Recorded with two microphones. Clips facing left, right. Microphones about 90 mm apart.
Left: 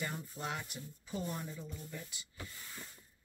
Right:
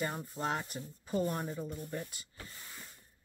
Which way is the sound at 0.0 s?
40° right (ahead or behind).